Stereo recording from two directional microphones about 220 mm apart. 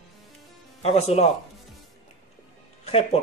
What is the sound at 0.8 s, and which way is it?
Speech, 30° left (ahead or behind).